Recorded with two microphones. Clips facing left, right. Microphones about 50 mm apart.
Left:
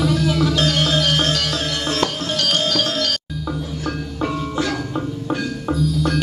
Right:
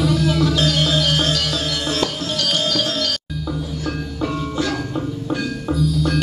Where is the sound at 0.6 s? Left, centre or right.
Left.